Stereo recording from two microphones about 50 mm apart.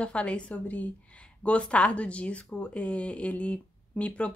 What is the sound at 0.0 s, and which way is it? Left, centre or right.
A woman's voice, left.